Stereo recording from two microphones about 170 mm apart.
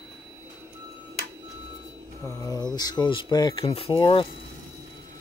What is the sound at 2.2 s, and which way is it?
Speech, 20° left (ahead or behind).